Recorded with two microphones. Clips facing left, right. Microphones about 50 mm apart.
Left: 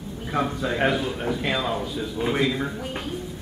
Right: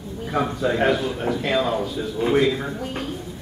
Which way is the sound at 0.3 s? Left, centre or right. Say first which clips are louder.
Right 3 dB; centre.